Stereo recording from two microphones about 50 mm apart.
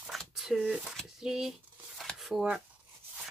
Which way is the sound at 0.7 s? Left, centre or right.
Right.